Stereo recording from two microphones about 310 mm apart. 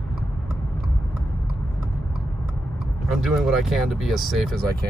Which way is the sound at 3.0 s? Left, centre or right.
Centre.